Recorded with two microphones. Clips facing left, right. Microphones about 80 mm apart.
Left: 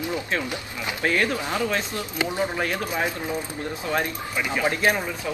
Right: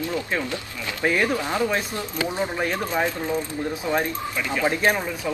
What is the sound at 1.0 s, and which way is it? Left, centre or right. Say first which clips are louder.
Speech: right 2 dB; centre.